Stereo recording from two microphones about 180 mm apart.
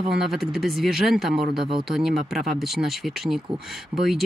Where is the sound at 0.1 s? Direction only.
Centre (ahead or behind).